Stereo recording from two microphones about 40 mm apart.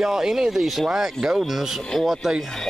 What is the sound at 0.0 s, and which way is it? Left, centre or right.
Speech, centre.